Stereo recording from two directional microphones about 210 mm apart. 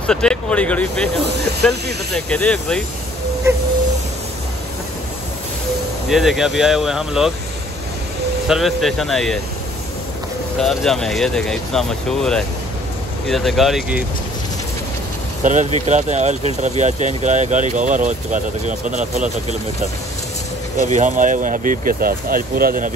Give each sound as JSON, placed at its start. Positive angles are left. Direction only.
{"t": 0.0, "sound": "speech", "side_deg": 5}
{"t": 2.1, "sound": "speech", "side_deg": 5}
{"t": 6.0, "sound": "speech", "side_deg": 0}
{"t": 8.5, "sound": "speech", "side_deg": 0}
{"t": 10.6, "sound": "speech", "side_deg": 0}
{"t": 15.4, "sound": "speech", "side_deg": -35}
{"t": 20.8, "sound": "speech", "side_deg": -35}